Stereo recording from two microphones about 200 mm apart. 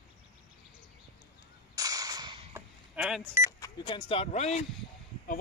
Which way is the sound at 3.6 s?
20° left (ahead or behind).